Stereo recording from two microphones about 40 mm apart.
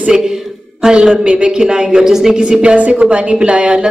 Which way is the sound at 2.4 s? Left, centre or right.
Right.